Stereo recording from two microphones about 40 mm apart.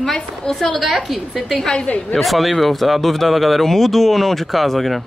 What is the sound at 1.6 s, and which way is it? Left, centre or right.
Speech, centre.